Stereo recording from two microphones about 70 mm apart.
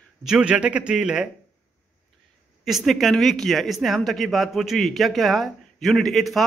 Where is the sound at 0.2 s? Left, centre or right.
Centre.